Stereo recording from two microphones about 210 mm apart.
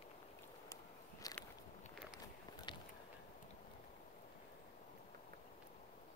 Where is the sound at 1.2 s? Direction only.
15° left (ahead or behind).